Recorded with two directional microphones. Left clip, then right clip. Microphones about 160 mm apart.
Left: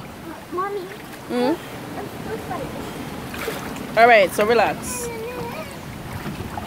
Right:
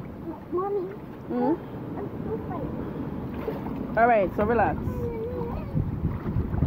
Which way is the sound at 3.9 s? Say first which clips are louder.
Left 8 dB; 20° left (ahead or behind).